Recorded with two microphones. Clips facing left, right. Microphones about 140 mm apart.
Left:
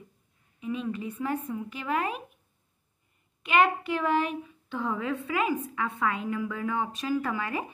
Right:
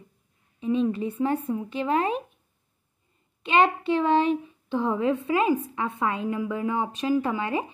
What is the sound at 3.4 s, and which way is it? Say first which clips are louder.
A child's voice: right 3 dB; 25° right (ahead or behind).